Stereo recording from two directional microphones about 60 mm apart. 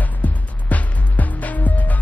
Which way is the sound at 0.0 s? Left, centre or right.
Left.